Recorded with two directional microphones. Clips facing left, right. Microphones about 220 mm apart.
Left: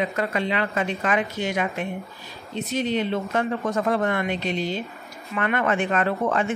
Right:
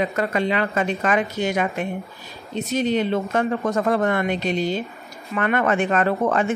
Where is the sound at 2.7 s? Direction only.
45° right (ahead or behind).